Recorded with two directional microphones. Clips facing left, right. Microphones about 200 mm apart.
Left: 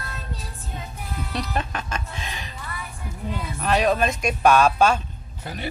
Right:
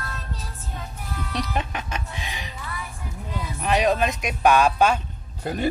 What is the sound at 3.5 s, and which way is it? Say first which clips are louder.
Speech: even; 15° right (ahead or behind).